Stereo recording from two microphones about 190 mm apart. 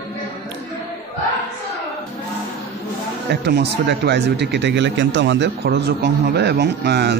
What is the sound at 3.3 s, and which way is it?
Speech, 60° right (ahead or behind).